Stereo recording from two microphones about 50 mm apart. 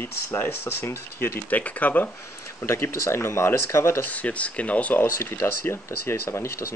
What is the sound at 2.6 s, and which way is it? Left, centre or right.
Speech, left.